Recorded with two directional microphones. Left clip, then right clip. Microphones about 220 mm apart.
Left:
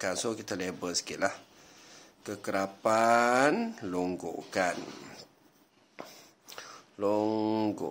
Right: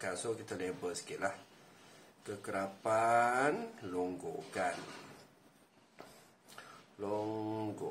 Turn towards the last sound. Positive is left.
turn(degrees=50)  # may be behind; listen again after turning